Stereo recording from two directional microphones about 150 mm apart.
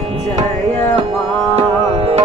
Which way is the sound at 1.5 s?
40° right (ahead or behind).